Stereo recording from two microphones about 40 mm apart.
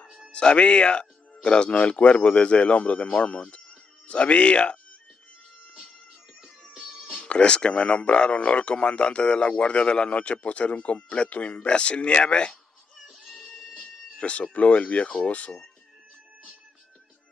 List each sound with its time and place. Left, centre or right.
0.3 s speech: left
6.4 s music: centre
7.2 s speech: left
13.3 s music: centre
14.1 s speech: left